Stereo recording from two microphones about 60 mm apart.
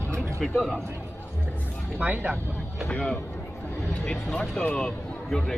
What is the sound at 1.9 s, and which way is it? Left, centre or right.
Speech, right.